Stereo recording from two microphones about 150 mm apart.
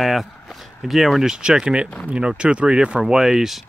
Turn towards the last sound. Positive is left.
turn(degrees=0)  # may be behind; listen again after turning